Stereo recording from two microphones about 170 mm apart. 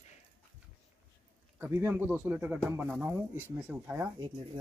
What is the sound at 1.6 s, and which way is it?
Speech, 15° right (ahead or behind).